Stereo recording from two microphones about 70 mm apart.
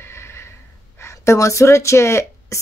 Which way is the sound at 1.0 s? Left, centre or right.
Left.